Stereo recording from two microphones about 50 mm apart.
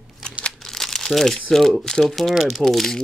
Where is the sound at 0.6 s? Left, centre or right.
Centre.